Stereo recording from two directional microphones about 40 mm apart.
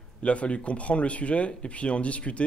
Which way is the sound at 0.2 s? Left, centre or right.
Left.